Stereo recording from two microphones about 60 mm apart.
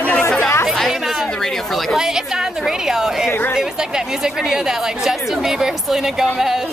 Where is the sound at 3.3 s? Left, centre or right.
Left.